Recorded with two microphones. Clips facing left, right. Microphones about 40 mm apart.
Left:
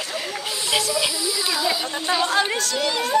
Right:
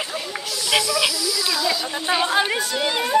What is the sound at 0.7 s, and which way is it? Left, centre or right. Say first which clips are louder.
Snake: right 3 dB; right.